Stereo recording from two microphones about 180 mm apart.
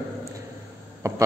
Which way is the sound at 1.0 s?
15° right (ahead or behind).